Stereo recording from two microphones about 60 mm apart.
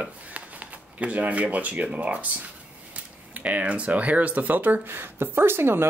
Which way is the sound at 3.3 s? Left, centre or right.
Right.